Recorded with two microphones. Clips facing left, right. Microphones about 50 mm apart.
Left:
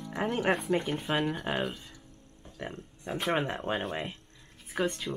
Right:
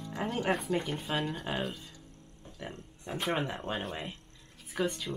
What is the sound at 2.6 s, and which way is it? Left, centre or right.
Speech, left.